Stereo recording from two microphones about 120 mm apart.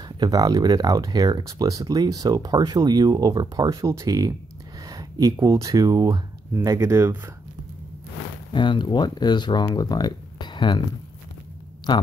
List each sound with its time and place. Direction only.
0.2 s speech: 30° right (ahead or behind)
8.5 s speech: 40° left (ahead or behind)
11.9 s speech: 35° left (ahead or behind)